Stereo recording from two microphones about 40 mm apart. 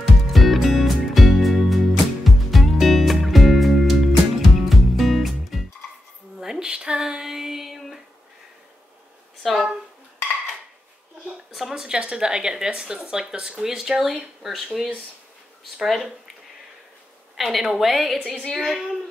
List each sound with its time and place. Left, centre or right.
0.0 s music: centre
6.4 s a sound: centre
9.4 s speech: centre
11.7 s a woman's voice: centre
17.4 s a woman's voice: centre